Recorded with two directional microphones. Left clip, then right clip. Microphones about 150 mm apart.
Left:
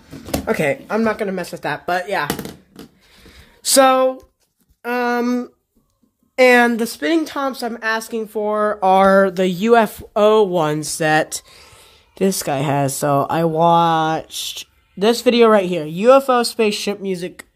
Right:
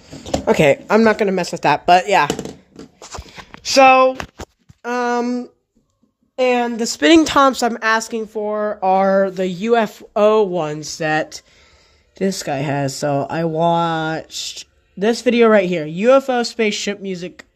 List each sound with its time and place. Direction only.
0.5 s speech: 25° right (ahead or behind)
0.8 s speech: 45° right (ahead or behind)
3.7 s speech: 10° left (ahead or behind)
4.8 s speech: centre (ahead or behind)
6.4 s speech: 25° left (ahead or behind)
7.0 s speech: 35° right (ahead or behind); by 8.2 s 20° right (ahead or behind)
8.3 s speech: 5° left (ahead or behind)